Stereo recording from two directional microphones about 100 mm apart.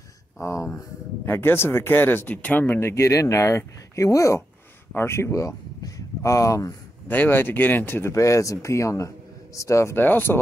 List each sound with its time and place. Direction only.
0.4 s speech: 30° left (ahead or behind)
7.1 s speech: 20° left (ahead or behind)